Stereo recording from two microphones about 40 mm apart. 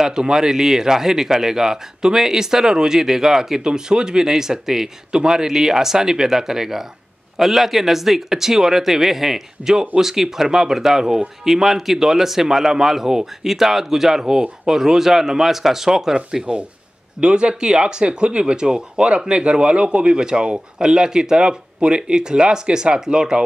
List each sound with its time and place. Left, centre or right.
0.0 s speech: centre